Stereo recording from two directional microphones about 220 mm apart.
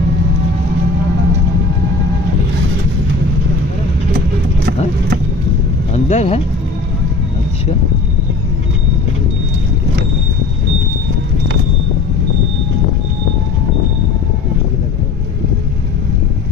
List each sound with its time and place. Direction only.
6.0 s speech: 30° left (ahead or behind)